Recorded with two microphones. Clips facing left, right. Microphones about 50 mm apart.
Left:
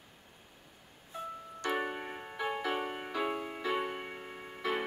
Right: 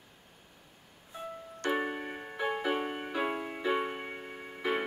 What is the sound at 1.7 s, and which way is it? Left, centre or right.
Keyboard, centre.